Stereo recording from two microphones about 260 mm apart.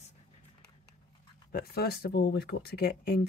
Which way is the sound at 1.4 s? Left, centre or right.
Left.